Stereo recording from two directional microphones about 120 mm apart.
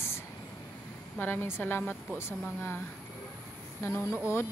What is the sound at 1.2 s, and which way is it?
A woman's voice, 15° left (ahead or behind).